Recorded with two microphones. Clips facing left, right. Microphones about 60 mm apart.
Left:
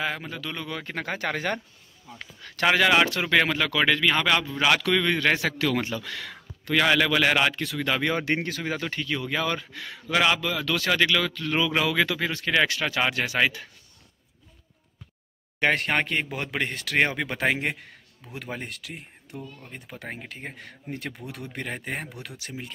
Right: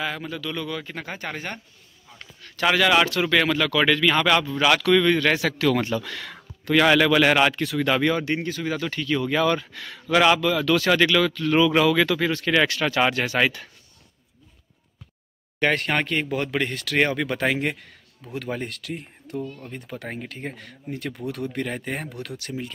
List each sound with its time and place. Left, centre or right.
0.0 s speech: left
0.8 s speech: left
1.1 s speech: left
2.6 s speech: left
5.6 s speech: centre
8.2 s speech: left
8.6 s speech: left
9.0 s speech: centre
15.6 s speech: left
20.6 s speech: left
21.3 s speech: centre